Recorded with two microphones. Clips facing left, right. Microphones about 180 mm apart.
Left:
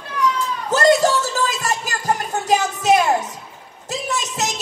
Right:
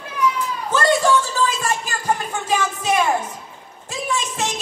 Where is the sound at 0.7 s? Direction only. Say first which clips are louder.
Left 2 dB; 40° left (ahead or behind).